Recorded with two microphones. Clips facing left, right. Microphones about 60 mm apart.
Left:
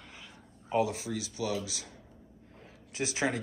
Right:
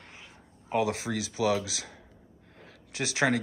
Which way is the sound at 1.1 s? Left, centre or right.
Right.